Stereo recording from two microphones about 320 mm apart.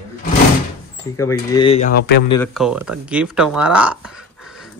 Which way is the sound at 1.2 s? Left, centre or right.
Centre.